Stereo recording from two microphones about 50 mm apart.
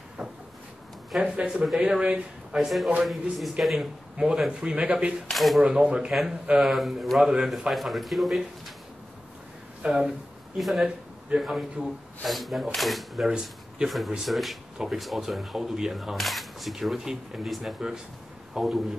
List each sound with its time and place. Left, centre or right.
0.2 s a sound: centre
1.2 s speech: right
2.5 s speech: centre
4.5 s speech: centre
5.3 s speech: centre
5.6 s speech: centre
6.6 s speech: centre
9.8 s speech: centre
10.6 s speech: centre
11.3 s speech: centre
12.3 s speech: centre
13.3 s speech: centre
13.8 s speech: centre